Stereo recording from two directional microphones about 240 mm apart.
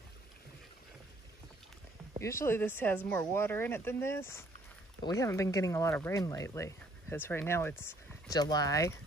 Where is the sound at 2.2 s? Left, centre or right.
Centre.